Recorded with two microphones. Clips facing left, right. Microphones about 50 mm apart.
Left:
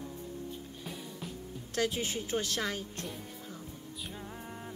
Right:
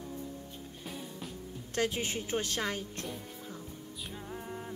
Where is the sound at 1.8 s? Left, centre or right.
Right.